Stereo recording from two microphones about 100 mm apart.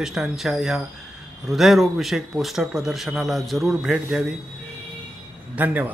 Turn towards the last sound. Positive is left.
turn(degrees=-15)  # may be behind; listen again after turning